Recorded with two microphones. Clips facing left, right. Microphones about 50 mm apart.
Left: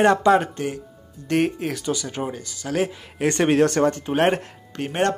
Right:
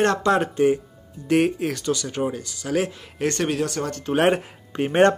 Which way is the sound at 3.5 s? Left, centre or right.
Left.